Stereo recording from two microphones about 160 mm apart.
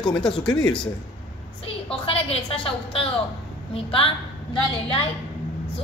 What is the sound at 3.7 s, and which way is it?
A woman's voice, 35° left (ahead or behind).